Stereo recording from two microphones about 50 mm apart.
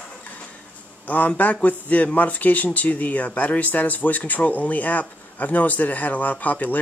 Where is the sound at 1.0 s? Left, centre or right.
Left.